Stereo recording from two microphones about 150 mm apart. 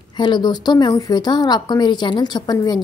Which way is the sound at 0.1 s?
30° left (ahead or behind).